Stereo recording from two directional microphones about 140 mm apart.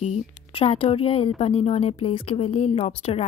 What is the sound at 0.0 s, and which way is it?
A woman's voice, 45° left (ahead or behind).